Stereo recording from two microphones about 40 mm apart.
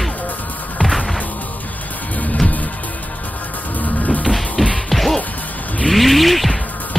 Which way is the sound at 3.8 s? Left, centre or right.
Left.